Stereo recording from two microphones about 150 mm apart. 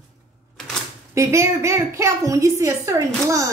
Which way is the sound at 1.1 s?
20° right (ahead or behind).